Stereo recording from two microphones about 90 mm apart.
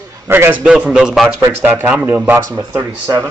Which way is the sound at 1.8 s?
20° right (ahead or behind).